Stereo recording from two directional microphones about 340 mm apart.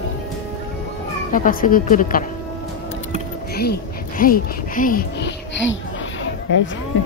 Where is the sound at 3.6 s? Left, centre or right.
Left.